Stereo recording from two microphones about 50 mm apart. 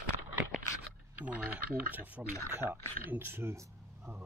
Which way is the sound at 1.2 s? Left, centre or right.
Right.